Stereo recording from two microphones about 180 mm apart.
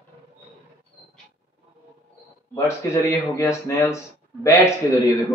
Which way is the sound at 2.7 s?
15° left (ahead or behind).